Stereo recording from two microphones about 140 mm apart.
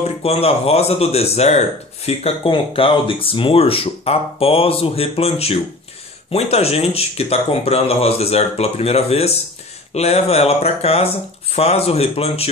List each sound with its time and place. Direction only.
0.2 s speech: 45° left (ahead or behind)